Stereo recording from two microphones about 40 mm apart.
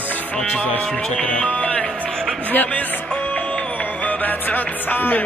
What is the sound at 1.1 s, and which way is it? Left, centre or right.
Music, left.